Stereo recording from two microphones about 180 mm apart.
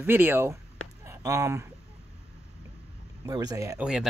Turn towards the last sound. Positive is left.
turn(degrees=-20)  # may be behind; listen again after turning